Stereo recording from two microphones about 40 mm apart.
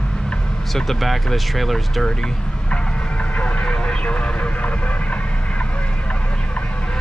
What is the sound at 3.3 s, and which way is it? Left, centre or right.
Speech, left.